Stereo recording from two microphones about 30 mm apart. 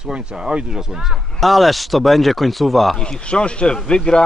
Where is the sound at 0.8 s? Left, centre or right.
Centre.